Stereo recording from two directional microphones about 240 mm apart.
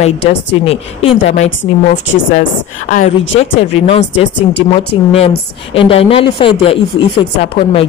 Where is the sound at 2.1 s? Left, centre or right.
Left.